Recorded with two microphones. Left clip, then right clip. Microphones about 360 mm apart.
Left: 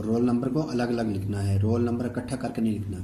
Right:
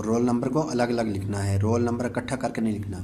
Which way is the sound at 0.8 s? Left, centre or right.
Right.